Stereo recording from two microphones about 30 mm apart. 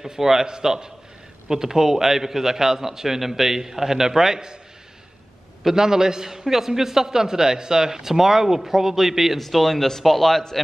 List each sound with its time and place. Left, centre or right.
0.1 s a man's voice: centre
5.6 s a man's voice: centre
9.4 s speech: centre